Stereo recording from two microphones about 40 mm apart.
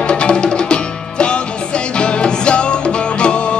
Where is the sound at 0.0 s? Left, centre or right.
Left.